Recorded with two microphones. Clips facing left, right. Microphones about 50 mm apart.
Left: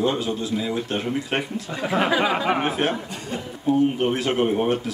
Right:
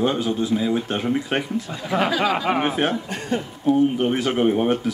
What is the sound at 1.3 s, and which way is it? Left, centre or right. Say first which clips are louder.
Speech: right 2 dB; left.